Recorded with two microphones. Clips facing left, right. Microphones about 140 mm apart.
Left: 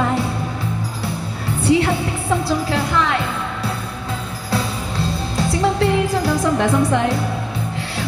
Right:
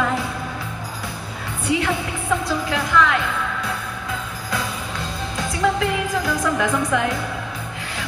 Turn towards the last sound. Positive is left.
turn(degrees=30)  # may be behind; listen again after turning